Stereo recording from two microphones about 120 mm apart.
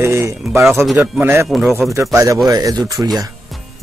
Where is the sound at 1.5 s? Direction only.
Centre (ahead or behind).